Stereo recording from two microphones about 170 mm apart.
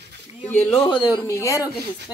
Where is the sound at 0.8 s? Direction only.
25° left (ahead or behind).